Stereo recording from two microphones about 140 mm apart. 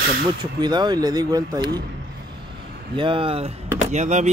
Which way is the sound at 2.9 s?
35° right (ahead or behind).